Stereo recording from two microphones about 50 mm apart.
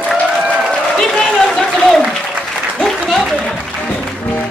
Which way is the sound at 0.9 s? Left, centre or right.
Centre.